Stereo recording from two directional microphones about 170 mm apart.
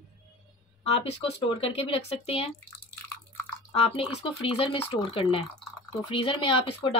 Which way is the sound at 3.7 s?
40° left (ahead or behind).